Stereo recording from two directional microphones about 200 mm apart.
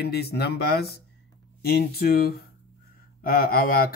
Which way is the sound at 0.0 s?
55° left (ahead or behind).